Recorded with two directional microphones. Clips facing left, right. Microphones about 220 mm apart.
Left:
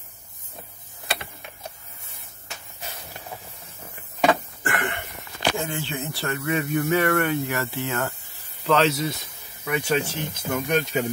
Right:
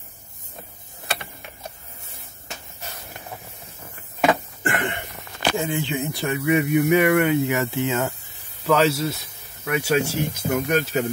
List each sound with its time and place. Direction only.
4.6 s a sound: 20° right (ahead or behind)
5.6 s speech: 15° right (ahead or behind)
8.6 s speech: 5° right (ahead or behind)